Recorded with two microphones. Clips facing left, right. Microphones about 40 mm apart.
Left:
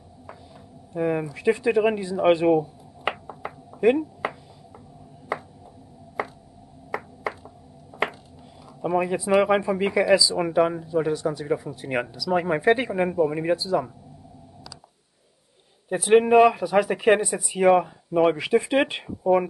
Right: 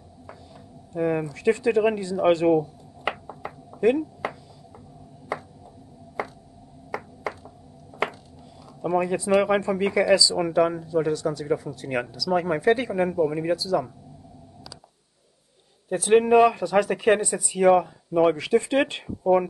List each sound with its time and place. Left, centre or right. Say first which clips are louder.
0.9 s a sound: even; centre
8.8 s speech: even; centre
15.9 s speech: left 1 dB; centre